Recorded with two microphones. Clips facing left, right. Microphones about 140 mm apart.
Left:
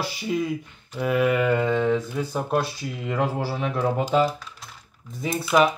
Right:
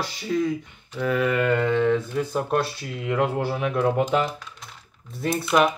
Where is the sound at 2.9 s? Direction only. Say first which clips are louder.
Right 2 dB; centre (ahead or behind).